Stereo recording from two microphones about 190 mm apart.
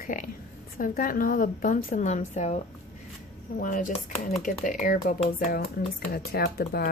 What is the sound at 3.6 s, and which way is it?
A woman's voice, 45° left (ahead or behind).